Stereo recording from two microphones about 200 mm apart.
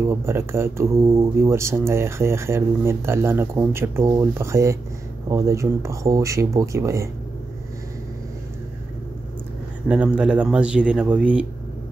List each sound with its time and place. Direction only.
0.1 s speech: 15° right (ahead or behind)
9.8 s speech: 5° right (ahead or behind)